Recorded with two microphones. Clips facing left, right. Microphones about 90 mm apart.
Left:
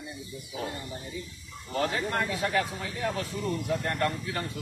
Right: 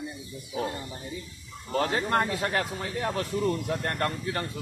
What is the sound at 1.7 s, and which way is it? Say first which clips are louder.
A man's voice: right 3 dB; 40° right (ahead or behind).